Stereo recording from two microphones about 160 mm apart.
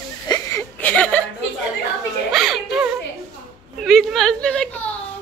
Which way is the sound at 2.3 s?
Centre (ahead or behind).